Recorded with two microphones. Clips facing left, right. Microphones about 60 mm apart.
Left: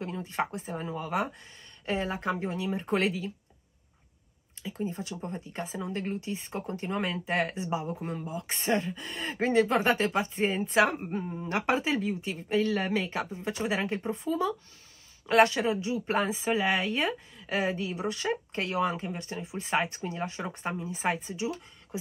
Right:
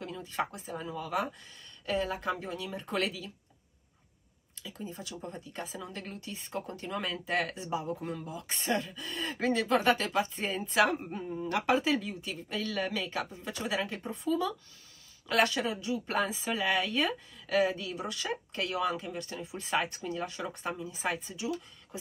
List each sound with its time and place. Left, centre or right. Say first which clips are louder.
0.0 s speech: left 3 dB; left
4.6 s speech: left 7 dB; left
13.2 s speech: left 4 dB; left